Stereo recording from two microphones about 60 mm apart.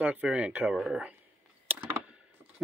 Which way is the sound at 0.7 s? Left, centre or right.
Centre.